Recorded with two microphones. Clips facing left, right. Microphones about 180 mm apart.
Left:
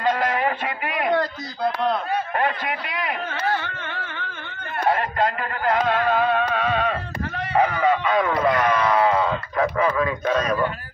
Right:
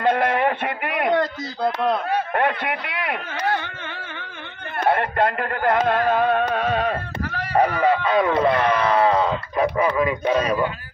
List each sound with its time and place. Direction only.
0.0 s a sound: 55° right (ahead or behind)
2.3 s a man's voice: 65° right (ahead or behind)
4.8 s speech: 60° right (ahead or behind); by 10.7 s 10° right (ahead or behind)